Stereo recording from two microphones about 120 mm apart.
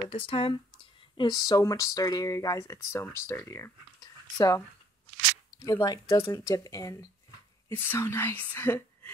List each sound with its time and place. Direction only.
0.1 s speech: 50° left (ahead or behind)
1.1 s speech: 35° left (ahead or behind)
4.0 s a sound: 30° left (ahead or behind)
5.6 s speech: 30° left (ahead or behind)